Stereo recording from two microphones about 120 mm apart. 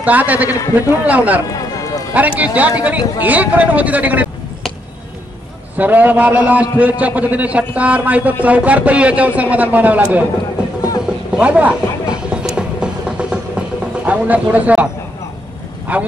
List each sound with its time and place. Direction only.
0.0 s a man's voice: 15° right (ahead or behind)
1.5 s a sound: 30° left (ahead or behind)
2.1 s a man's voice: 15° right (ahead or behind)
5.8 s a man's voice: 15° right (ahead or behind)
11.3 s a sound: 10° right (ahead or behind)
15.9 s a man's voice: 10° right (ahead or behind)